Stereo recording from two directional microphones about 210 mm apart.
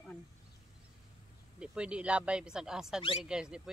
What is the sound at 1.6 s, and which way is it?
Speech, 5° right (ahead or behind).